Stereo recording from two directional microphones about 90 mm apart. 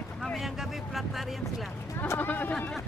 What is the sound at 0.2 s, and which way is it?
Vehicle, centre (ahead or behind).